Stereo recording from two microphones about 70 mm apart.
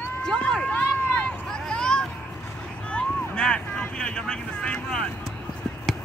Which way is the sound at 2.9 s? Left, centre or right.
Centre.